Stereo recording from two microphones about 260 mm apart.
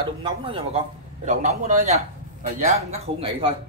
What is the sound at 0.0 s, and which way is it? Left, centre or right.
Speech, centre.